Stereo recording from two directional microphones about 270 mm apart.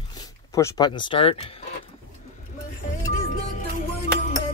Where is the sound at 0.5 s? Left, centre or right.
Centre.